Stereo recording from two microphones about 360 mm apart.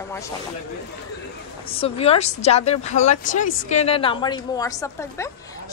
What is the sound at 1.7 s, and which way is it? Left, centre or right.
A woman's voice, centre.